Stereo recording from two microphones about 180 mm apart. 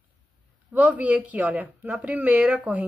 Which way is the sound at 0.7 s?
10° right (ahead or behind).